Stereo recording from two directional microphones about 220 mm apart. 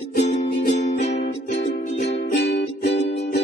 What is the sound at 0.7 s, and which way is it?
Music, 30° left (ahead or behind).